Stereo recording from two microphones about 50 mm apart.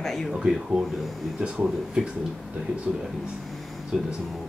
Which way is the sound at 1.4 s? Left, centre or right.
Centre.